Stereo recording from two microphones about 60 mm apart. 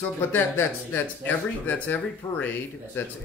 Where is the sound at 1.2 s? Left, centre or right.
Left.